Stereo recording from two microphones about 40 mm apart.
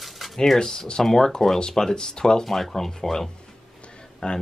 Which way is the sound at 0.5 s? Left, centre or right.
Centre.